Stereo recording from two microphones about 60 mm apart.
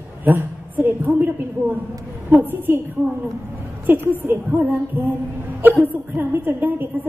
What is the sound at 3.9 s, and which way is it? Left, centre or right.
Speech, right.